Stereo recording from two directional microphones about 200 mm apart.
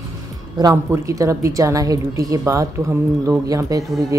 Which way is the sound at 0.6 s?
15° right (ahead or behind).